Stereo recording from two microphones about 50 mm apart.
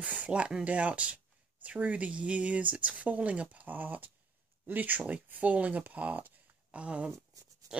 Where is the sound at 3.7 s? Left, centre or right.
Right.